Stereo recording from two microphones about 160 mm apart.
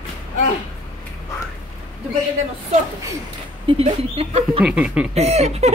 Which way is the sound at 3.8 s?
40° right (ahead or behind).